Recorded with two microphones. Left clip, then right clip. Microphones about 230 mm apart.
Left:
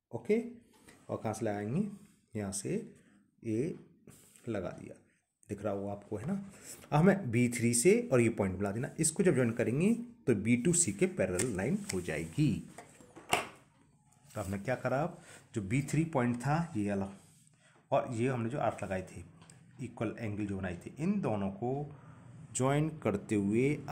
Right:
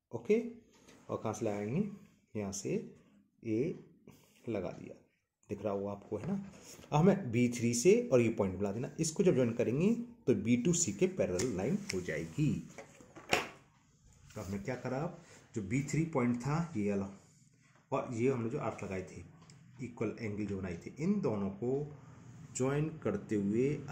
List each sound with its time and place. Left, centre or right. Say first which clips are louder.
0.1 s speech: even; left
4.1 s a sound: even; left
5.5 s speech: even; left
14.3 s speech: left 5 dB; left